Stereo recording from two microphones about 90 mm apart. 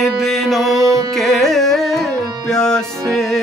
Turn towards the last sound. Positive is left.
turn(degrees=5)  # may be behind; listen again after turning